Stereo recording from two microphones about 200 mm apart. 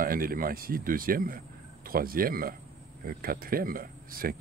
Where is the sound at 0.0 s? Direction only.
45° right (ahead or behind).